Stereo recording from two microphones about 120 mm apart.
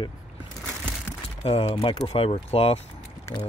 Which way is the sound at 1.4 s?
55° left (ahead or behind).